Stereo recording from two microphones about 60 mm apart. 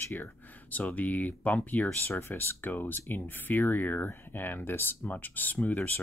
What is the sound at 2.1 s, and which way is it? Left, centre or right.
Speech, left.